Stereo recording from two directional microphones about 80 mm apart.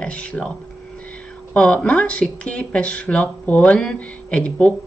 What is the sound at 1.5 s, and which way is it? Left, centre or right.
Speech, centre.